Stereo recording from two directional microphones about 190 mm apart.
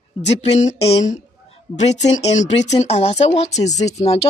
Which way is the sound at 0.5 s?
35° left (ahead or behind).